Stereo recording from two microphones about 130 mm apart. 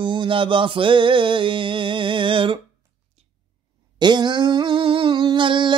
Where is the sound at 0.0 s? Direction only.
40° right (ahead or behind).